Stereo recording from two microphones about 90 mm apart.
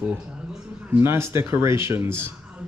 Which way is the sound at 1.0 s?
25° right (ahead or behind).